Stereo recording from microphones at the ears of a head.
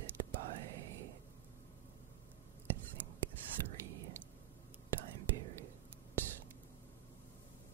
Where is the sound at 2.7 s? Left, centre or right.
Right.